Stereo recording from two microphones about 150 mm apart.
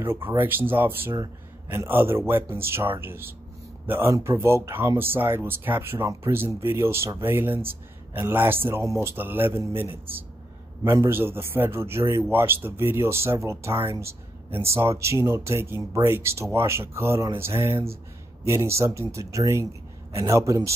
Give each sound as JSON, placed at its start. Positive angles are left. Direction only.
{"t": 0.0, "sound": "a man's voice", "side_deg": -15}